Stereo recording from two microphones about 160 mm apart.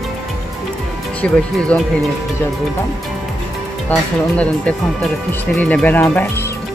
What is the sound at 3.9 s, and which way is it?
Speech, 5° left (ahead or behind).